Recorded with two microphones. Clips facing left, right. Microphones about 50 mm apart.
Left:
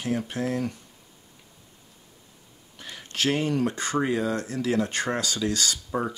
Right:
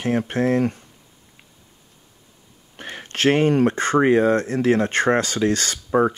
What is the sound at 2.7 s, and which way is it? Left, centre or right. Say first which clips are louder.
Speech: right 5 dB; right.